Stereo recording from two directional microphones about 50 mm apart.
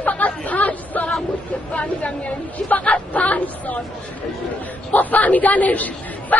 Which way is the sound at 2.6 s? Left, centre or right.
Left.